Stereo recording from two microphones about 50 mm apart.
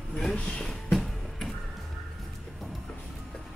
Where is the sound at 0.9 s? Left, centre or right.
Centre.